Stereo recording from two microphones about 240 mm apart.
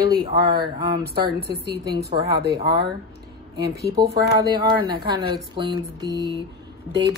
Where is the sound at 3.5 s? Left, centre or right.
Right.